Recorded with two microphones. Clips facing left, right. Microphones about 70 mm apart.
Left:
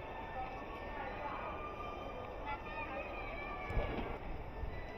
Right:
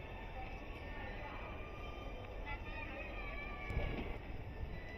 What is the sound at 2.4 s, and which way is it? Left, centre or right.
Vehicle, left.